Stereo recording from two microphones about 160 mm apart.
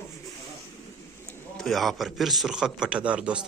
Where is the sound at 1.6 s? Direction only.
Centre (ahead or behind).